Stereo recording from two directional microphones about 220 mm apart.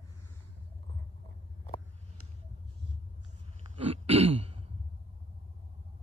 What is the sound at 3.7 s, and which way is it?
Throat clearing, 25° right (ahead or behind).